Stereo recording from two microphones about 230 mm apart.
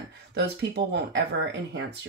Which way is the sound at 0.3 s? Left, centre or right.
Right.